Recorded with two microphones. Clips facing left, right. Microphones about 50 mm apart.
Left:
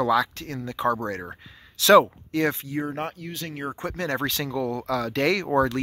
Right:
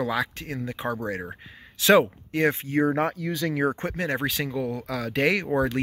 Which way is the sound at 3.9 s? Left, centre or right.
Centre.